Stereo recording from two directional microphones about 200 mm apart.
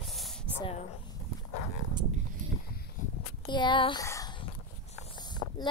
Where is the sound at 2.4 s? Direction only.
40° right (ahead or behind).